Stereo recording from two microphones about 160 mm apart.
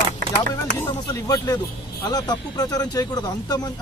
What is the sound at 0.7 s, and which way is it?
Speech, 15° left (ahead or behind).